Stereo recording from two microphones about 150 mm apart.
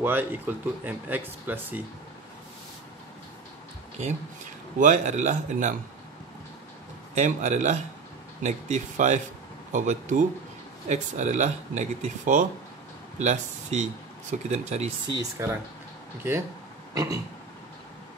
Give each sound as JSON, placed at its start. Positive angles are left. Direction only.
{"t": 0.0, "sound": "speech", "side_deg": -15}
{"t": 4.7, "sound": "speech", "side_deg": -55}
{"t": 7.2, "sound": "speech", "side_deg": -55}
{"t": 15.3, "sound": "speech", "side_deg": -15}
{"t": 16.9, "sound": "cough", "side_deg": -25}